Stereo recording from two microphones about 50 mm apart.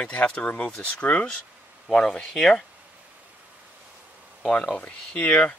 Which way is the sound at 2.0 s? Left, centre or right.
Centre.